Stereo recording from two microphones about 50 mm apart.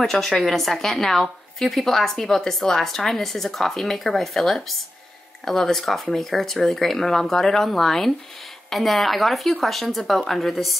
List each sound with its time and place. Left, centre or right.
0.0 s a woman's voice: centre